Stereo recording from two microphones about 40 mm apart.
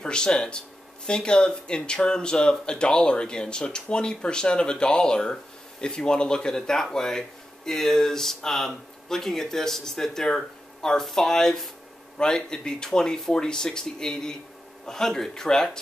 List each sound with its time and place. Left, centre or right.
0.0 s speech: centre